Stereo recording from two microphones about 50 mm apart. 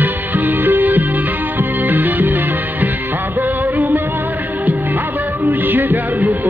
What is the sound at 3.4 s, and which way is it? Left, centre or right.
Music, right.